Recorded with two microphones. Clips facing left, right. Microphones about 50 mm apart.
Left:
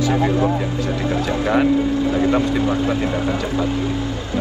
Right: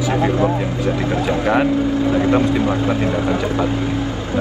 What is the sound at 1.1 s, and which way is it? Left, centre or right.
Speech, right.